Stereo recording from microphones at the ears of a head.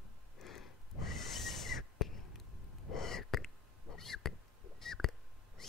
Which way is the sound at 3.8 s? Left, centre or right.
Left.